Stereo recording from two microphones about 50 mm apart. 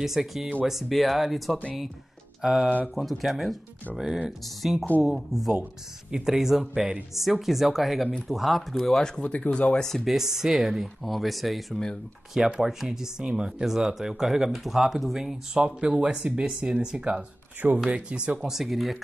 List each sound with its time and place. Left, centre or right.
0.0 s speech: centre
7.2 s speech: centre
9.0 s speech: centre
9.3 s speech: left
10.0 s speech: centre
11.7 s speech: centre
12.4 s speech: centre
13.2 s speech: centre
13.7 s speech: centre
15.9 s speech: centre
18.4 s speech: centre